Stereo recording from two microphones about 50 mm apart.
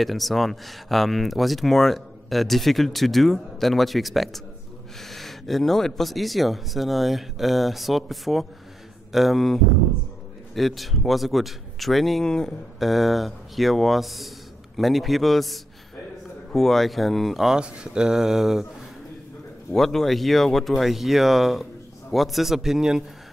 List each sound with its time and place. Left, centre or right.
0.0 s speech: centre
12.3 s speech: centre
12.7 s speech: centre
17.6 s speech: centre
19.7 s speech: centre